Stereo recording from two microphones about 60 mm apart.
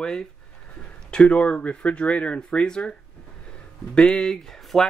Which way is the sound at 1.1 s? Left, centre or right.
Centre.